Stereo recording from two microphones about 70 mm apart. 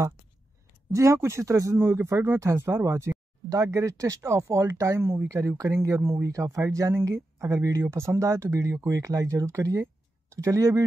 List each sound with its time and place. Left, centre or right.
0.9 s speech: right